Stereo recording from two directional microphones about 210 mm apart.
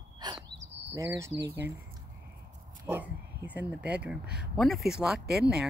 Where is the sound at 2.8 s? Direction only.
10° right (ahead or behind).